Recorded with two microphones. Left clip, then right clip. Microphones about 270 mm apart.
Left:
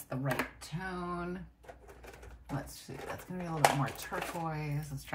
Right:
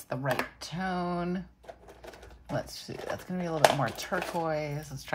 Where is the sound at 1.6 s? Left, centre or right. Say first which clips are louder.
Right 5 dB; right.